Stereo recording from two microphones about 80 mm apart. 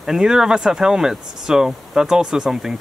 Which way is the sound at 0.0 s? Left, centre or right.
Centre.